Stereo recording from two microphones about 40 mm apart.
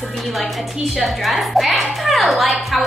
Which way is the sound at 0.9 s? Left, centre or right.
Centre.